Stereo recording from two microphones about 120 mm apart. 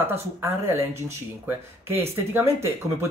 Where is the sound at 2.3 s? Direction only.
20° right (ahead or behind).